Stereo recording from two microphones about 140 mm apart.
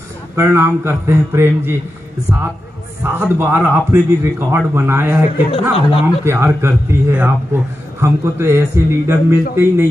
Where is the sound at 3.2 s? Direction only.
15° right (ahead or behind).